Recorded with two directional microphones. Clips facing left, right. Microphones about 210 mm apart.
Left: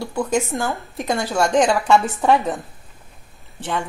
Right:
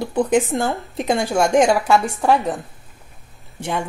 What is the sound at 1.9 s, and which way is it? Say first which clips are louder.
Speech: even; centre (ahead or behind).